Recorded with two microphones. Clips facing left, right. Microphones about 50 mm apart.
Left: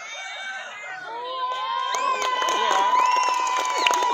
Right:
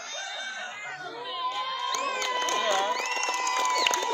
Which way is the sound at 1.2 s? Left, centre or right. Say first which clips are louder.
Left 4 dB; centre.